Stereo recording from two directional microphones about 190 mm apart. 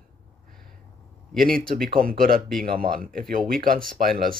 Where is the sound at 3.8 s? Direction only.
5° left (ahead or behind).